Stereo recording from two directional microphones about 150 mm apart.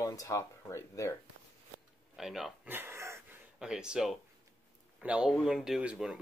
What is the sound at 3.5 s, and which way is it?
Speech, 5° right (ahead or behind).